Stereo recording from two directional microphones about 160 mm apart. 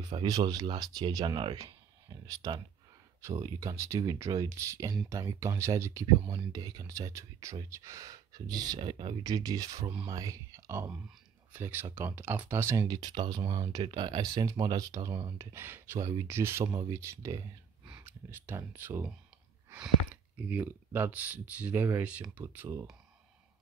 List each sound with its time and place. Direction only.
0.1 s speech: 25° right (ahead or behind)
8.7 s speech: 35° right (ahead or behind); by 19.1 s 10° right (ahead or behind)
20.3 s speech: 10° right (ahead or behind)